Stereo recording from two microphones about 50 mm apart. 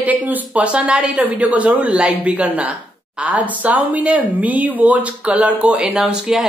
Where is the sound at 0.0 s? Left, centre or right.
Right.